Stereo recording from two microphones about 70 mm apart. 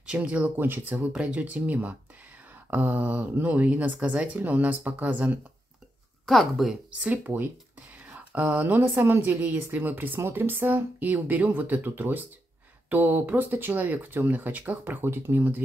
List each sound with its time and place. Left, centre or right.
0.0 s speech: centre
6.2 s speech: centre
6.9 s speech: centre
8.1 s a sound: right
8.5 s speech: right